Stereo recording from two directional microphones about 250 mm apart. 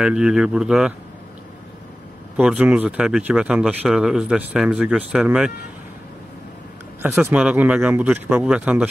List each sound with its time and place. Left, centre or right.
0.0 s speech: centre
2.3 s speech: centre
7.0 s speech: centre